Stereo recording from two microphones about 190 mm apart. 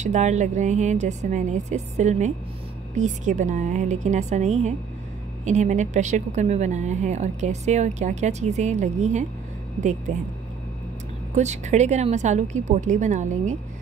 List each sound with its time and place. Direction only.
0.0 s a woman's voice: 40° right (ahead or behind)
11.3 s a woman's voice: 40° right (ahead or behind)